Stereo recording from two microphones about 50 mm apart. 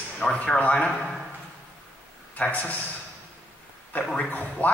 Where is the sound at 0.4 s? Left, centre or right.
Left.